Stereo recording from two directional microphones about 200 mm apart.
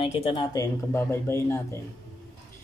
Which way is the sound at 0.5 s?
15° left (ahead or behind).